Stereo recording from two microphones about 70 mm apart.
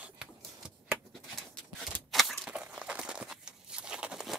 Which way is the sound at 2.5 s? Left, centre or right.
Centre.